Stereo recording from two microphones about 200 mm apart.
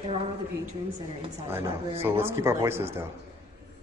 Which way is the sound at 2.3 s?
10° right (ahead or behind).